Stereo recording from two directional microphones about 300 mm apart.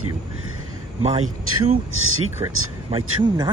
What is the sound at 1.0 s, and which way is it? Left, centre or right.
Speech, right.